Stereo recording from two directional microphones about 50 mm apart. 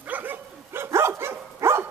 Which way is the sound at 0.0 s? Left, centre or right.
Right.